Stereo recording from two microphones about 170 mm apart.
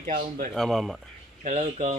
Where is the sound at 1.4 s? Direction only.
50° right (ahead or behind).